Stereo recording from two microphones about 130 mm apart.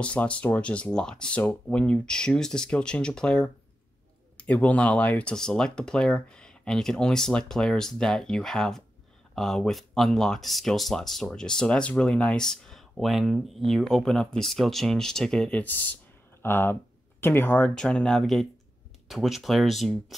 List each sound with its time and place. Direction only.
0.0 s speech: 10° left (ahead or behind)